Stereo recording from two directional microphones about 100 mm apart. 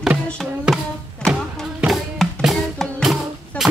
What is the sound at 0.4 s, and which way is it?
Music, centre (ahead or behind).